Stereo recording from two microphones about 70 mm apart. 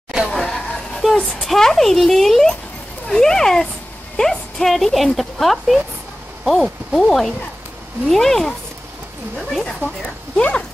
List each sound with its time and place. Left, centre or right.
0.3 s music: centre
1.1 s a child's voice: centre
10.3 s a child's voice: centre